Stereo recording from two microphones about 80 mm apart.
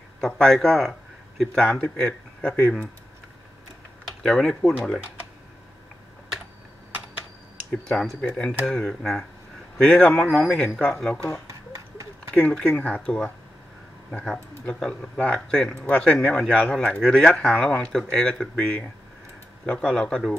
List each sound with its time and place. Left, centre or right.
0.2 s a man's voice: centre
4.2 s a man's voice: centre
7.8 s a man's voice: centre
11.4 s a sound: right
12.4 s a man's voice: centre
14.7 s a man's voice: centre
16.6 s a man's voice: centre